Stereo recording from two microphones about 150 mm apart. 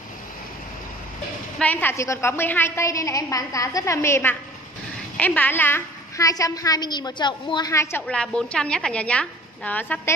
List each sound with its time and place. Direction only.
1.6 s a woman's voice: 10° left (ahead or behind); by 7.7 s 30° left (ahead or behind)
7.7 s a woman's voice: 15° left (ahead or behind)
8.1 s a woman's voice: 5° left (ahead or behind)